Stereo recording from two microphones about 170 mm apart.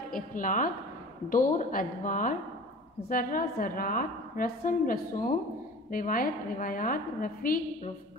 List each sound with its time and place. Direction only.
0.1 s a woman's voice: 50° left (ahead or behind)